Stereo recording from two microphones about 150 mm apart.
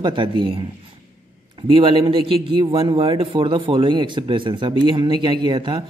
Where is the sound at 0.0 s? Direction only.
35° right (ahead or behind).